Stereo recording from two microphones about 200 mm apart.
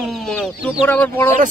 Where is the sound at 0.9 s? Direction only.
10° left (ahead or behind).